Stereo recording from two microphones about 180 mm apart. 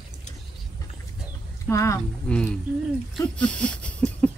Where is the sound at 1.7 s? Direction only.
15° left (ahead or behind).